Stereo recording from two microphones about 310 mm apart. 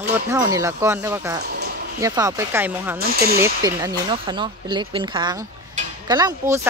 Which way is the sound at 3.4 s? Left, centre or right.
Centre.